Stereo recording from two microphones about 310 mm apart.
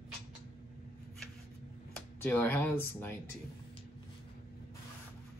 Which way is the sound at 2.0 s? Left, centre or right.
Centre.